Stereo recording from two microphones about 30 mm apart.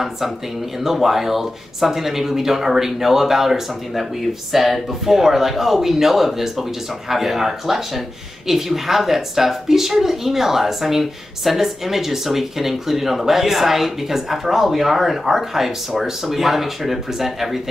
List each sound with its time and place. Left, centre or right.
0.8 s speech: centre